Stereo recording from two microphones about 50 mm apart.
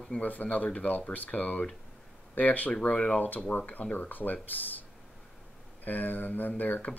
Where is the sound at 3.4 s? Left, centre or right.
Left.